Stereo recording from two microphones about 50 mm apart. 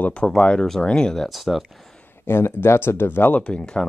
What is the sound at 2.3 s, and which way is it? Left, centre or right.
Speech, left.